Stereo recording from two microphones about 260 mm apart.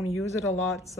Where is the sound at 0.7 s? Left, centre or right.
Centre.